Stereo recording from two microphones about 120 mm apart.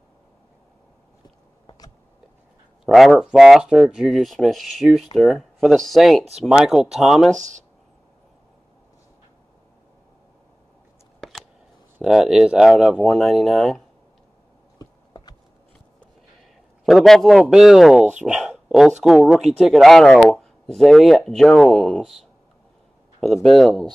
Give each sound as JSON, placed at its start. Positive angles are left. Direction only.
{"t": 2.8, "sound": "speech", "side_deg": 0}
{"t": 7.3, "sound": "speech", "side_deg": -90}
{"t": 12.0, "sound": "speech", "side_deg": -5}
{"t": 14.8, "sound": "a sound", "side_deg": 35}
{"t": 16.8, "sound": "speech", "side_deg": 0}
{"t": 18.2, "sound": "a sound", "side_deg": -10}
{"t": 19.0, "sound": "speech", "side_deg": 0}
{"t": 23.2, "sound": "speech", "side_deg": 0}